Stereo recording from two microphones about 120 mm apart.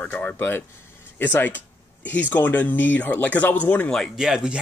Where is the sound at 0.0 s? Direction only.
10° left (ahead or behind).